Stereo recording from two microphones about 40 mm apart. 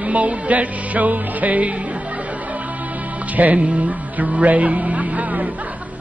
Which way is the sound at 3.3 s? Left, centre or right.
Right.